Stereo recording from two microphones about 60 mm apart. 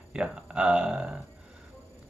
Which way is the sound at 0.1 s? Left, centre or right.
Centre.